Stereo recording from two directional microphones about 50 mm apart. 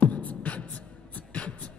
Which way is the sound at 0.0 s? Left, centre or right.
Left.